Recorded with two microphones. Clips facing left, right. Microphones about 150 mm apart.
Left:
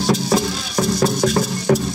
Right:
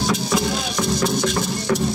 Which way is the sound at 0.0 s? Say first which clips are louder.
Left 3 dB; 40° left (ahead or behind).